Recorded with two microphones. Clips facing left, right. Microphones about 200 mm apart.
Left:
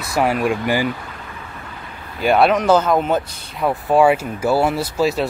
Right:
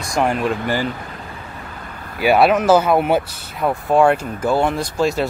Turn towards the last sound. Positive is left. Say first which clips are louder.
# even
turn(degrees=0)  # may be behind; listen again after turning